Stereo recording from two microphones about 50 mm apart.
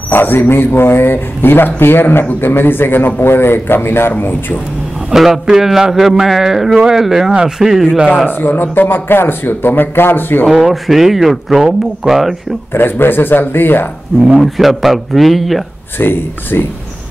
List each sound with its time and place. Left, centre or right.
0.1 s a man's voice: left
5.1 s a man's voice: centre
8.3 s a man's voice: left
10.5 s speech: centre
12.7 s a man's voice: left
14.4 s speech: centre
16.0 s a man's voice: left